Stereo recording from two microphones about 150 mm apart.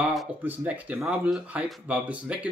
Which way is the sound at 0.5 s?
10° right (ahead or behind).